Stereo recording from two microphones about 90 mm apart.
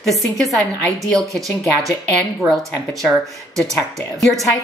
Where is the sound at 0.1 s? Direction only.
Centre (ahead or behind).